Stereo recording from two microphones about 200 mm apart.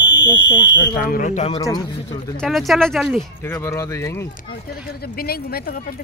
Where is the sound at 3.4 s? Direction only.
15° left (ahead or behind).